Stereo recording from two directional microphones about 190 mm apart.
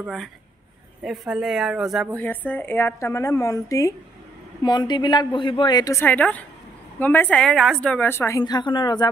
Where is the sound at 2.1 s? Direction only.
10° left (ahead or behind).